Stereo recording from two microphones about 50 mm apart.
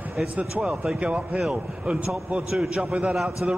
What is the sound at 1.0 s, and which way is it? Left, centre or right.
Speech, right.